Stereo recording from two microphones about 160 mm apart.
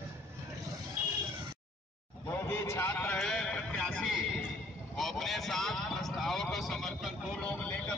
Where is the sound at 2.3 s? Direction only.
15° left (ahead or behind).